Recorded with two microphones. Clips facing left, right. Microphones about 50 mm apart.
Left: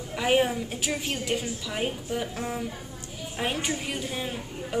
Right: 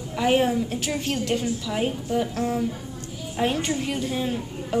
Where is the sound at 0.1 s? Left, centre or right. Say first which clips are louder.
Right 3 dB; centre.